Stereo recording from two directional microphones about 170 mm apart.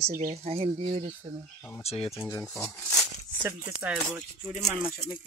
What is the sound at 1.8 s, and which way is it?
Speech, 35° left (ahead or behind).